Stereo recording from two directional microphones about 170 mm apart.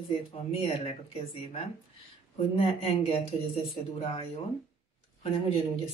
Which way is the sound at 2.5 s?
35° left (ahead or behind).